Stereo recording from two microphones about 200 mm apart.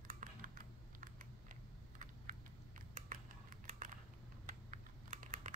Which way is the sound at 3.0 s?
45° right (ahead or behind).